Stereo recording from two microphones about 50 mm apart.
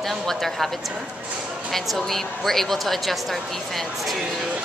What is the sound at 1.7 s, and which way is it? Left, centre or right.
A woman's voice, centre.